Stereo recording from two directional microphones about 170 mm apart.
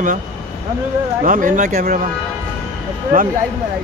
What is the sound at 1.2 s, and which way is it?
Speech, 50° right (ahead or behind).